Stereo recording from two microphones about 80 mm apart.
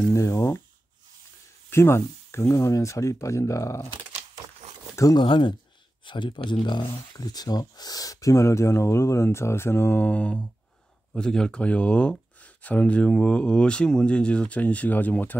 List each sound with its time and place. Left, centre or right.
0.1 s speech: left
1.7 s speech: left
5.1 s speech: left